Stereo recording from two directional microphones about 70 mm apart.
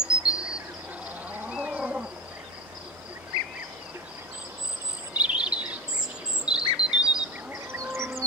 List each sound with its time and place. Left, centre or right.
0.0 s a sound: centre
1.5 s insect: centre
5.1 s bird vocalization: centre
6.4 s cricket: centre
7.7 s bird: right